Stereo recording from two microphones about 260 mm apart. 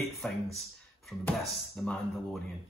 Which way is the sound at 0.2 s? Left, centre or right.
Centre.